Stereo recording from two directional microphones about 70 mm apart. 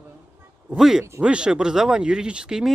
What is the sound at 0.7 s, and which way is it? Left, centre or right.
Speech, centre.